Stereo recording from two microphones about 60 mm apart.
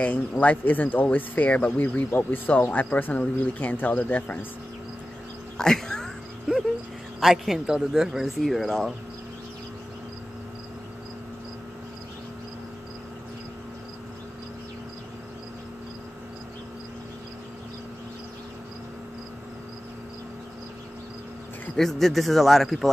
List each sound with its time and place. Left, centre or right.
0.0 s speech: left
2.0 s speech: left
5.6 s a sound: centre
7.2 s speech: centre
21.7 s speech: centre